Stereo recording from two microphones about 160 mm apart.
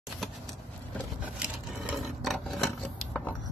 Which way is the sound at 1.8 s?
Centre (ahead or behind).